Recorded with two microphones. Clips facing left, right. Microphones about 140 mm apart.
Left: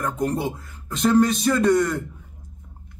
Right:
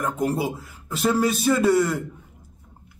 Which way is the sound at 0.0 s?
5° right (ahead or behind).